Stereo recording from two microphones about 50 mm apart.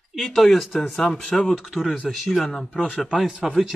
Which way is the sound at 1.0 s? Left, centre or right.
Centre.